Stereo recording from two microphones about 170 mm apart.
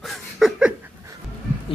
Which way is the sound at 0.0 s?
Centre (ahead or behind).